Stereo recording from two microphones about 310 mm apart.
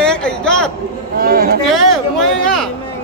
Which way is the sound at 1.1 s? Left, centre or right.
Right.